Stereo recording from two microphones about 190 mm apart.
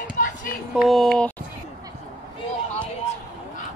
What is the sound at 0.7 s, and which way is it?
Speech, centre (ahead or behind).